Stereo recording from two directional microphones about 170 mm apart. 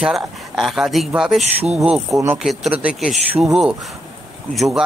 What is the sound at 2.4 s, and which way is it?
Speech, centre (ahead or behind).